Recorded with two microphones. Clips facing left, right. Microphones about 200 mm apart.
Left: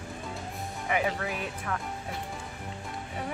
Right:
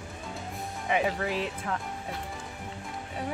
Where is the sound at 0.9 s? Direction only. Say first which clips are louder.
Right 2 dB; 25° right (ahead or behind).